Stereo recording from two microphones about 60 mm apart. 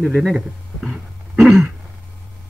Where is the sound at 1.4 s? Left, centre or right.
Centre.